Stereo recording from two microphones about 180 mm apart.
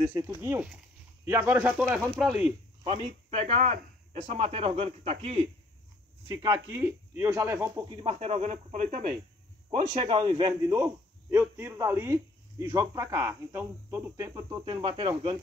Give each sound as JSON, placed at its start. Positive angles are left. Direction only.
{"t": 0.1, "sound": "a man's voice", "side_deg": -15}
{"t": 2.8, "sound": "speech", "side_deg": -35}
{"t": 6.2, "sound": "a man's voice", "side_deg": -20}
{"t": 7.9, "sound": "speech", "side_deg": -30}
{"t": 9.7, "sound": "a man's voice", "side_deg": -30}